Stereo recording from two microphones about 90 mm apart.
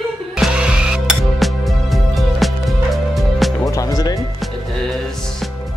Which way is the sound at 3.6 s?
40° left (ahead or behind).